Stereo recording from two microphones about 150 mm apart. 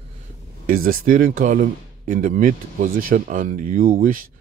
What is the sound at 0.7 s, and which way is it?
Speech, 70° right (ahead or behind).